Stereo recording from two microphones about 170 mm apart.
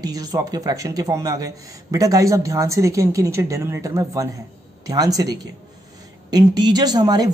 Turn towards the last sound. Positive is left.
turn(degrees=-25)  # may be behind; listen again after turning